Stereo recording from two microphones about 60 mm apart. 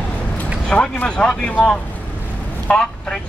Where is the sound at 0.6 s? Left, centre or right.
Centre.